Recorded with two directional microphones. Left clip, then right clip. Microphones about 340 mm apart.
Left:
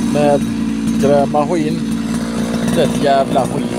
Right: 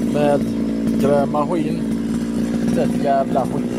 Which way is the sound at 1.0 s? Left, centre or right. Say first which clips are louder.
Left 5 dB; right.